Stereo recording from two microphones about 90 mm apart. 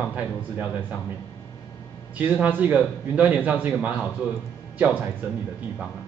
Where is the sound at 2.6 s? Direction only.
20° right (ahead or behind).